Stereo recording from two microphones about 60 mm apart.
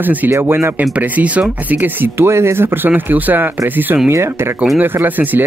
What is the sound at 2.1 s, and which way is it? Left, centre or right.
Speech, right.